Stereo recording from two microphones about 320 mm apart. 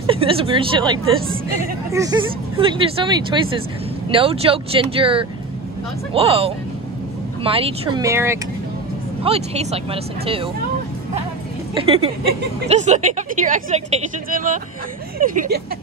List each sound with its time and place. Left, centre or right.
0.0 s speech: centre
9.2 s speech: centre
11.7 s speech: centre